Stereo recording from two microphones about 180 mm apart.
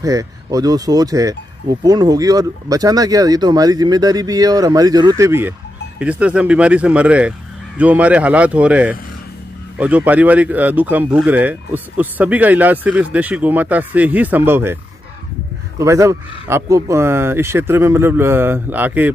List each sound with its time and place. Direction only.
0.0 s speech: 20° right (ahead or behind)
15.8 s speech: 15° right (ahead or behind)